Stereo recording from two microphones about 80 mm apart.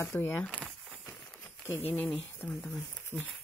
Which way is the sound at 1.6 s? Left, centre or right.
Left.